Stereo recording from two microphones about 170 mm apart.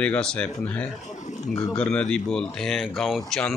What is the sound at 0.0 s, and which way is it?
Speech, 5° left (ahead or behind).